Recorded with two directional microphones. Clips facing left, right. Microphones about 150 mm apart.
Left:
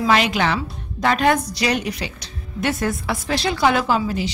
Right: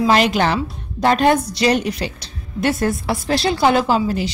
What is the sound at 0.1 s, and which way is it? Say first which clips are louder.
A woman's voice: even; 40° right (ahead or behind).